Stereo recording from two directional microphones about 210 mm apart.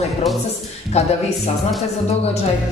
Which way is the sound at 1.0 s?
30° left (ahead or behind).